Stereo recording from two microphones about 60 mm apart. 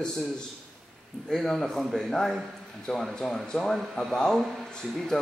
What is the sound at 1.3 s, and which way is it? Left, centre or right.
Speech, centre.